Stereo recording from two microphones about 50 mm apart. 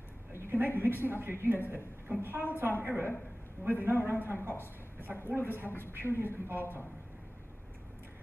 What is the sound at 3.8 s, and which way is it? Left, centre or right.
A woman's voice, right.